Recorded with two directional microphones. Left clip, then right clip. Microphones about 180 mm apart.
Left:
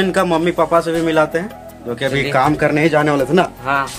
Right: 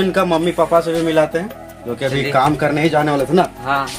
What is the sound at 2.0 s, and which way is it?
Speech, 5° right (ahead or behind).